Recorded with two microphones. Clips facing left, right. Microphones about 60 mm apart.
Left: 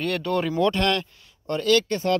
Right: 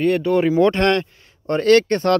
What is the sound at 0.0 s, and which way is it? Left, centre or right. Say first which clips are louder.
Speech: right 8 dB; right.